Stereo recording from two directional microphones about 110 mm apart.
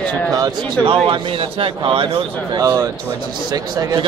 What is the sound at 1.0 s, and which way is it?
A man's voice, 55° right (ahead or behind).